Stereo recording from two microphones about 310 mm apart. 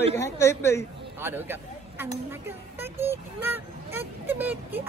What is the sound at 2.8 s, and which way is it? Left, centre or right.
Vehicle, centre.